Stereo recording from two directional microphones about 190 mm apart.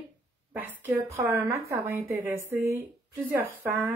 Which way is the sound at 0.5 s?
10° right (ahead or behind).